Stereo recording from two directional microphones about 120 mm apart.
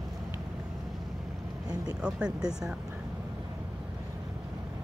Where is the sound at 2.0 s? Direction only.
5° right (ahead or behind).